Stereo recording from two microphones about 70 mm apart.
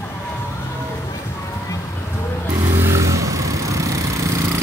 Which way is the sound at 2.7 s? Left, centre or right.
Right.